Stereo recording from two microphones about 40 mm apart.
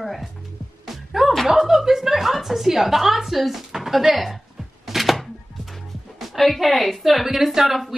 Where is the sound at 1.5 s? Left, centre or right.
Centre.